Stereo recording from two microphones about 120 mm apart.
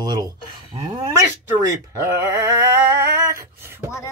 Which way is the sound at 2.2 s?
30° right (ahead or behind).